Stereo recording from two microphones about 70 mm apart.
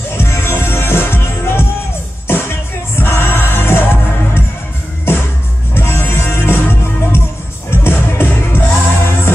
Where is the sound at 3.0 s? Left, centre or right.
Left.